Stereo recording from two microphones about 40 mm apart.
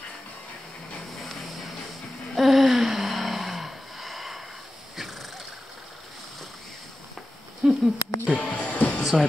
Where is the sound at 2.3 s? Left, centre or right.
Centre.